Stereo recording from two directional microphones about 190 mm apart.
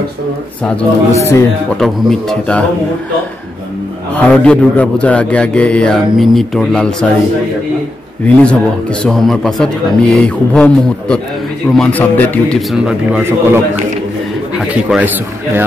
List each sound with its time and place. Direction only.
0.7 s speech: 10° left (ahead or behind)
1.8 s a man's voice: centre (ahead or behind)
4.1 s a man's voice: 5° left (ahead or behind)
9.0 s a man's voice: centre (ahead or behind)
14.6 s a man's voice: 5° right (ahead or behind)